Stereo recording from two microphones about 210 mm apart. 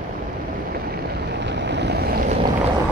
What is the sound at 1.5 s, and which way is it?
Boat, 55° right (ahead or behind).